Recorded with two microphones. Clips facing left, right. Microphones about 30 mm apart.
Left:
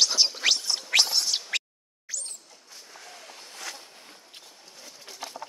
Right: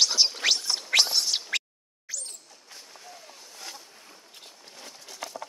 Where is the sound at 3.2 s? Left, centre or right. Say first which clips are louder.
Left 3 dB; left.